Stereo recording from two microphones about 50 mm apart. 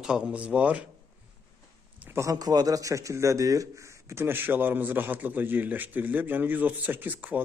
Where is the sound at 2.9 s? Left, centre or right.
Right.